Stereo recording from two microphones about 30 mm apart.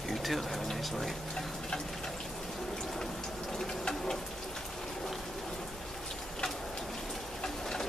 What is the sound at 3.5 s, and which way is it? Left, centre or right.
Insect, left.